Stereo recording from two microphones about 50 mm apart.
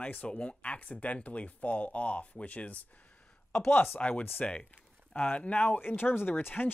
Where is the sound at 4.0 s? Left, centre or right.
Left.